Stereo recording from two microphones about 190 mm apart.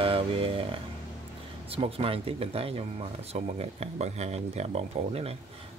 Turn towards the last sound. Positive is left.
turn(degrees=-35)  # may be behind; listen again after turning